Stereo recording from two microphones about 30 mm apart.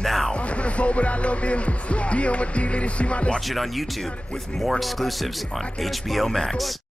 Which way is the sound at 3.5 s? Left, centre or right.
Centre.